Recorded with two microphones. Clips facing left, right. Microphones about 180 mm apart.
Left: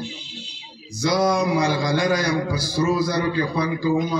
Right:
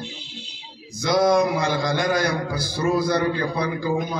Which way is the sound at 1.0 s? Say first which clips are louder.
Right 2 dB; 55° right (ahead or behind).